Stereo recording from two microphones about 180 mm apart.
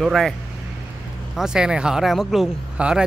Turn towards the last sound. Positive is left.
turn(degrees=-5)  # may be behind; listen again after turning